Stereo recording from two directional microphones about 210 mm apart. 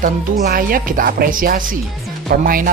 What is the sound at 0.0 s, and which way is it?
Speech, 45° right (ahead or behind).